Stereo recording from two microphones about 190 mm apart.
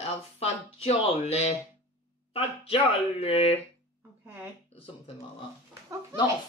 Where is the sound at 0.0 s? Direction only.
35° left (ahead or behind).